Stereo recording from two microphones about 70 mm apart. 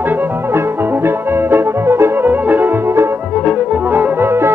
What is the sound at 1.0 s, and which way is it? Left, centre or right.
Music, right.